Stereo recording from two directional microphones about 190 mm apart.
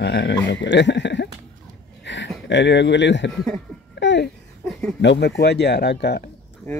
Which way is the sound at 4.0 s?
70° left (ahead or behind).